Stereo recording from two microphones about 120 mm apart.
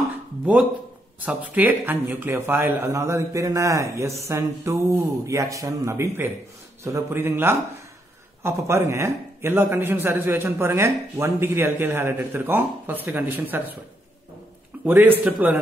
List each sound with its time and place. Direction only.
0.5 s a man's voice: 10° right (ahead or behind)
14.9 s a man's voice: 15° right (ahead or behind)